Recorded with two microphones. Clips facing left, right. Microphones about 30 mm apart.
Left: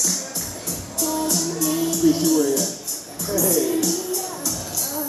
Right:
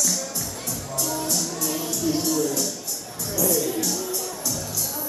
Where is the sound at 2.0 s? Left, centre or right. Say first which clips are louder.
Left 7 dB; left.